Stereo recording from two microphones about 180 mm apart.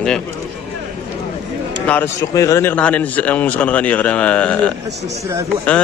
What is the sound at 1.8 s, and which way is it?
A man's voice, 15° left (ahead or behind).